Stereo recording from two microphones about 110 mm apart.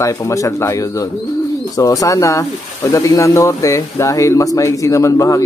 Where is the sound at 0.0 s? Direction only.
30° left (ahead or behind).